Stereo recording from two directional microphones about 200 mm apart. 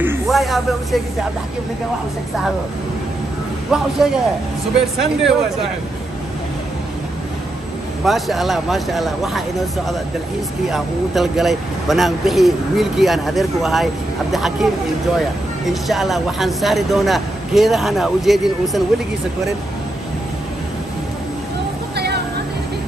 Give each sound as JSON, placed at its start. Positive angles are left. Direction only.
{"t": 0.3, "sound": "a man's voice", "side_deg": 0}
{"t": 3.7, "sound": "a man's voice", "side_deg": 0}
{"t": 8.0, "sound": "a man's voice", "side_deg": 0}
{"t": 10.7, "sound": "a man's voice", "side_deg": 0}
{"t": 21.9, "sound": "music", "side_deg": -55}